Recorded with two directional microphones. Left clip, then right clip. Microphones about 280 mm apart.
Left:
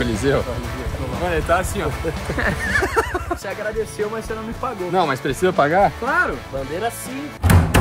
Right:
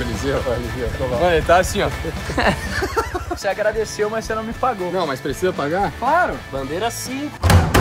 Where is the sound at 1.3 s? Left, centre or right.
Right.